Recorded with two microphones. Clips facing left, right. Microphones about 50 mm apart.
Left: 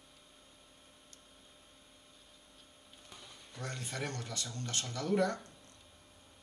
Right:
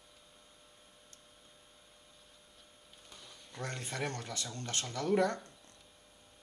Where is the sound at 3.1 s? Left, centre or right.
Centre.